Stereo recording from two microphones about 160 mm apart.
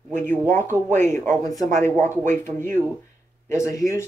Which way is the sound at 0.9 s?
15° left (ahead or behind).